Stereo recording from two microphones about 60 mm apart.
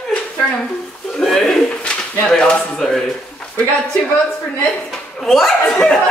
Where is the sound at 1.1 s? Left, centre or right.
Centre.